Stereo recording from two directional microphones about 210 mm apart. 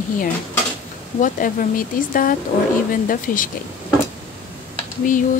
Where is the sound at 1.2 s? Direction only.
40° left (ahead or behind).